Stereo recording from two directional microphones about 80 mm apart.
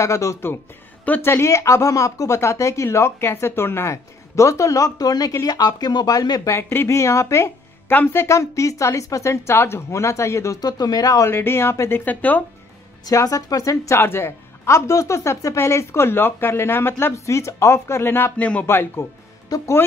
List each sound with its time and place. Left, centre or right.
0.0 s a woman's voice: left
1.0 s a woman's voice: left
5.6 s speech: left
6.5 s a woman's voice: left
10.6 s speech: left
11.2 s a woman's voice: left
12.0 s speech: left
13.1 s a woman's voice: left
19.5 s speech: left